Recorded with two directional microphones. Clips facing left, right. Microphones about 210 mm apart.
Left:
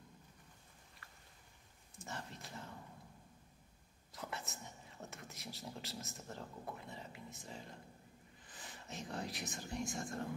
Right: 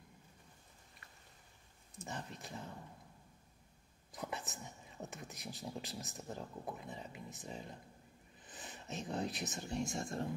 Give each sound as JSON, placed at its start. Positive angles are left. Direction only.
{"t": 2.0, "sound": "speech", "side_deg": -15}
{"t": 4.1, "sound": "whispering", "side_deg": -15}
{"t": 5.0, "sound": "speech", "side_deg": -15}